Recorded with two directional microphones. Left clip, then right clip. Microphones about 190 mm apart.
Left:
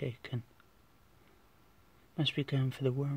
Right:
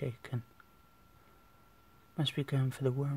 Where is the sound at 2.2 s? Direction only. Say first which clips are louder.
Left 2 dB; 5° left (ahead or behind).